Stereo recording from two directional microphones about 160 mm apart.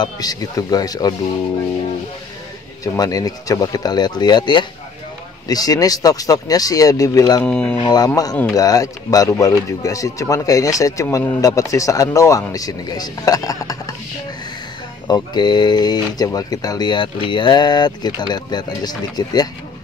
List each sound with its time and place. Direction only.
0.0 s speech: 25° left (ahead or behind)
2.8 s speech: 20° left (ahead or behind)
7.4 s speech: 5° left (ahead or behind)
7.7 s speech: 25° left (ahead or behind)
15.0 s speech: 25° left (ahead or behind)